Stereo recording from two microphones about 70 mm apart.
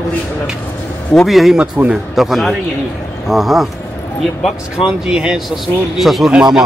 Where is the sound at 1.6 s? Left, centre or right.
Centre.